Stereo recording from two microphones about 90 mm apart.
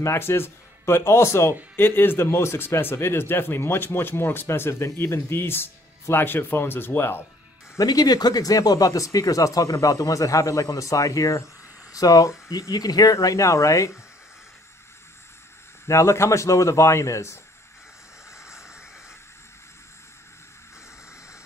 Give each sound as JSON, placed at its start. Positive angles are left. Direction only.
{"t": 0.0, "sound": "speech", "side_deg": 30}
{"t": 7.7, "sound": "speech", "side_deg": 45}
{"t": 15.9, "sound": "speech", "side_deg": 30}